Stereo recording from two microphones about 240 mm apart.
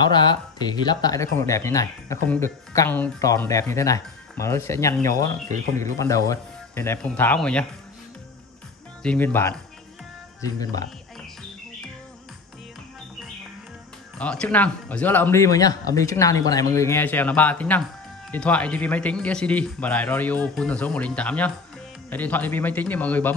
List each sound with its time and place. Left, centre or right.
0.0 s speech: centre
9.0 s speech: centre
14.1 s speech: centre